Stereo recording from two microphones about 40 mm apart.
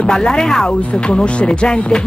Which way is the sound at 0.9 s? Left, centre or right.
Left.